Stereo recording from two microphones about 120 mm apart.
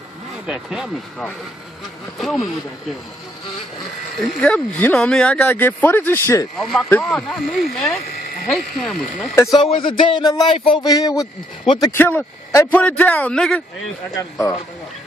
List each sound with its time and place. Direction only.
0.5 s speech: 5° right (ahead or behind)
2.1 s speech: centre (ahead or behind)
4.4 s speech: 10° left (ahead or behind)
6.5 s speech: centre (ahead or behind)
9.6 s speech: 45° left (ahead or behind); by 11.2 s 30° left (ahead or behind)
11.9 s speech: 15° left (ahead or behind)
14.1 s speech: 30° left (ahead or behind)